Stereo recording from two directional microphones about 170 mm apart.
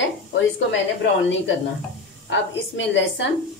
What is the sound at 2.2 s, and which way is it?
A woman's voice, 90° left.